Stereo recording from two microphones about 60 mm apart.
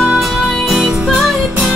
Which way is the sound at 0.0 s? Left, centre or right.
Centre.